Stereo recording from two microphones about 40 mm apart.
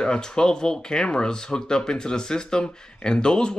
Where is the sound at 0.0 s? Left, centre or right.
Centre.